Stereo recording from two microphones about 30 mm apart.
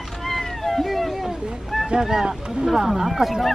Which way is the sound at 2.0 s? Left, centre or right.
Centre.